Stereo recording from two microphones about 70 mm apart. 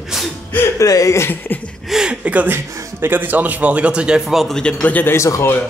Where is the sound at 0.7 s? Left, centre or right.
Left.